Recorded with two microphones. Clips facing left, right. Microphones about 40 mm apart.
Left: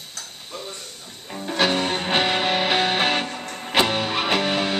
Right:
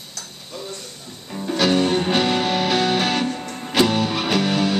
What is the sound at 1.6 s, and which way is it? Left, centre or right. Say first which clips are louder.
Music: right 3 dB; centre.